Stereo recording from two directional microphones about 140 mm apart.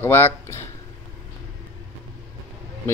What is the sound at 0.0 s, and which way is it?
Speech, 15° left (ahead or behind).